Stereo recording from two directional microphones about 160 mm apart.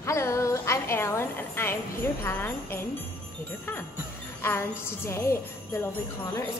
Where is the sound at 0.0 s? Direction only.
20° left (ahead or behind).